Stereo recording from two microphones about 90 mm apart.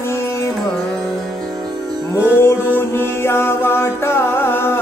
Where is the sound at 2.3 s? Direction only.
25° left (ahead or behind).